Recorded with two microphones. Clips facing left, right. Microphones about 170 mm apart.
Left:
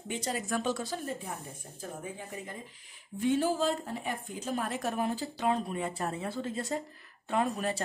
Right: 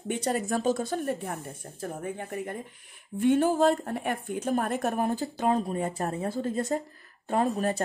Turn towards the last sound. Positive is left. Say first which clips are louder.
# right 4 dB
turn(degrees=-40)  # may be behind; listen again after turning